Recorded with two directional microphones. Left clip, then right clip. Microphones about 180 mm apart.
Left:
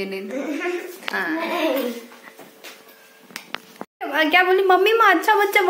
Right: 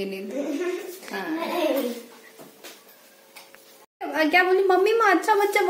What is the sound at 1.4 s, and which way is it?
Speech, 15° right (ahead or behind).